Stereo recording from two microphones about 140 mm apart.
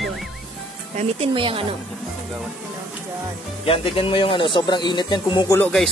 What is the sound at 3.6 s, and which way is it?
Speech, 45° left (ahead or behind).